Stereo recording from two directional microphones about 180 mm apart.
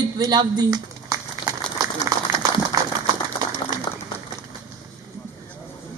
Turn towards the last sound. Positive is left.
turn(degrees=25)  # may be behind; listen again after turning